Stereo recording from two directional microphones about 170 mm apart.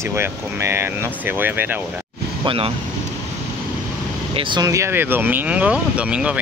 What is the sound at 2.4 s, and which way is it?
Speech, 35° right (ahead or behind).